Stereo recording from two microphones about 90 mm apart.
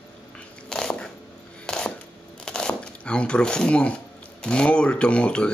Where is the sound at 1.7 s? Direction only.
5° left (ahead or behind).